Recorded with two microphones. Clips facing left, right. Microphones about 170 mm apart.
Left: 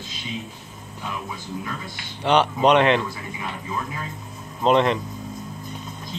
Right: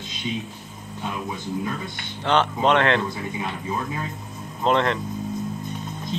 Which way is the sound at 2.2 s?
15° left (ahead or behind).